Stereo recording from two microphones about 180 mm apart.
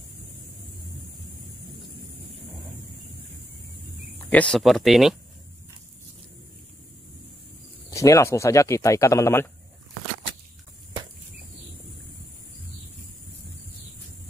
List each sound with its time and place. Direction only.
4.3 s speech: 5° left (ahead or behind)
7.9 s speech: 15° left (ahead or behind)